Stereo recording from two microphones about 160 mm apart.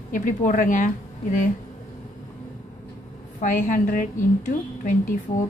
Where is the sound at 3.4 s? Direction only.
55° left (ahead or behind).